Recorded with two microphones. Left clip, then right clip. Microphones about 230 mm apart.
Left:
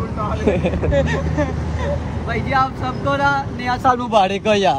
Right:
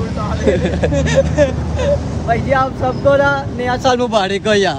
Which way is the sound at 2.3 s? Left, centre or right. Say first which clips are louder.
Right 4 dB; right.